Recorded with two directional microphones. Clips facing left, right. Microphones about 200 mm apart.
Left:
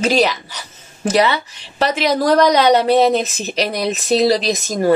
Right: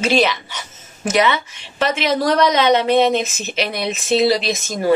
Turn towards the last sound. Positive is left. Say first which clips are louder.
# left 3 dB
turn(degrees=40)  # may be behind; listen again after turning